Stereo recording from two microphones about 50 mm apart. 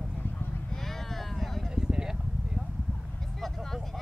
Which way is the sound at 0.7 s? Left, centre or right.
Centre.